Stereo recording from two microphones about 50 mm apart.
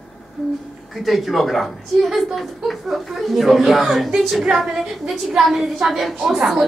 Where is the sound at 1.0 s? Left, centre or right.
Centre.